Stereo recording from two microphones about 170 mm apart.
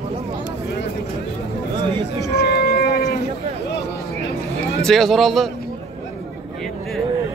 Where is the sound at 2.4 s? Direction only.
70° left (ahead or behind).